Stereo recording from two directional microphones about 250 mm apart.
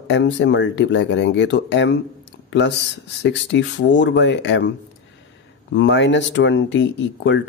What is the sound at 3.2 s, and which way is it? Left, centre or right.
Speech, left.